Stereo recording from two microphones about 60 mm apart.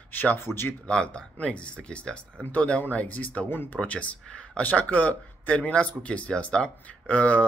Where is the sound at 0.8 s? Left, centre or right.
Centre.